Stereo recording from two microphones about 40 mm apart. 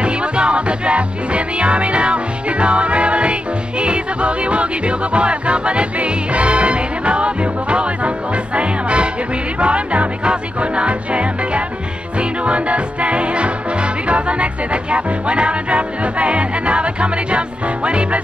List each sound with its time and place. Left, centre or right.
0.0 s music: right